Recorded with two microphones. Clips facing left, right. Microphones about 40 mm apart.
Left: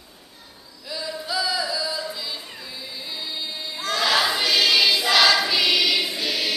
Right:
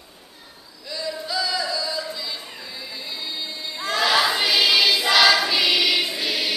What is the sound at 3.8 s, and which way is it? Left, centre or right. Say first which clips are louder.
Choir: right 1 dB; centre.